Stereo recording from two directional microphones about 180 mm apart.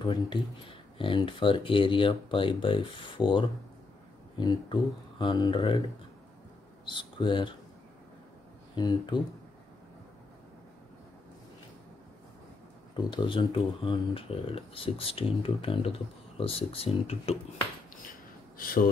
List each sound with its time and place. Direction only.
0.0 s speech: 25° left (ahead or behind)
6.9 s speech: 25° left (ahead or behind)
8.7 s speech: 25° left (ahead or behind)
12.9 s speech: 25° left (ahead or behind)
18.6 s speech: 50° left (ahead or behind)